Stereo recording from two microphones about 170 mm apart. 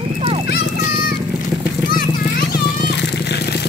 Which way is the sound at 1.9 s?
65° left (ahead or behind).